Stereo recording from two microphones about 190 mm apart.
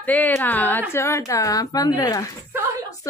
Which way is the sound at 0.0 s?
10° left (ahead or behind).